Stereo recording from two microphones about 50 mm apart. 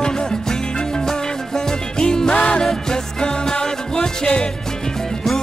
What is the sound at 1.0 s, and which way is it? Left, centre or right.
Music, centre.